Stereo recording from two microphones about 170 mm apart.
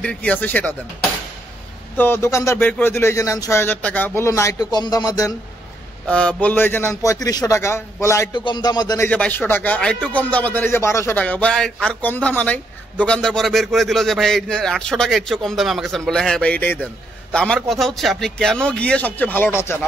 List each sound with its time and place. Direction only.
0.0 s speech: 5° left (ahead or behind)
2.0 s speech: 15° left (ahead or behind)
6.0 s speech: 5° left (ahead or behind)
9.1 s a man's voice: 10° left (ahead or behind)